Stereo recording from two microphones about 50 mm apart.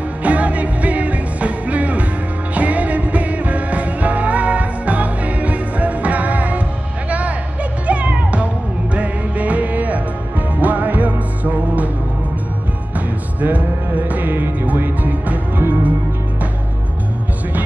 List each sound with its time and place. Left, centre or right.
0.2 s music: right
7.1 s a sound: right
7.8 s music: right
13.4 s music: right